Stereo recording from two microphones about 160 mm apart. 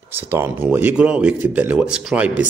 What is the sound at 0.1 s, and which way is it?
Speech, 15° right (ahead or behind).